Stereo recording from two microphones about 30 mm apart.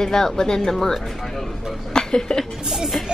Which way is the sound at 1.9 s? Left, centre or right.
Left.